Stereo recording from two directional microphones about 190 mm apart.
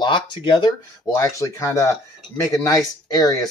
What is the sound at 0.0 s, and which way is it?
Speech, 25° left (ahead or behind).